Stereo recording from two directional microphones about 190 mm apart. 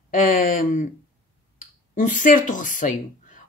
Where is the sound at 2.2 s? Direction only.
45° left (ahead or behind).